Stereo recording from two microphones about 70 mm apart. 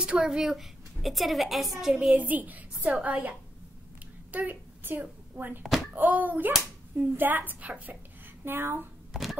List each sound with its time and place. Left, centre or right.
0.0 s a woman's voice: centre
2.1 s a woman's voice: right
5.6 s a woman's voice: centre
5.9 s a woman's voice: right
9.1 s a sound: centre